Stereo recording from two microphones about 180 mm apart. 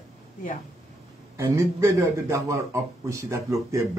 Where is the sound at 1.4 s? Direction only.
15° right (ahead or behind).